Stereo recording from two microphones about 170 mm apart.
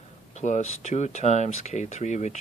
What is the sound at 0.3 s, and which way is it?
Speech, 45° left (ahead or behind).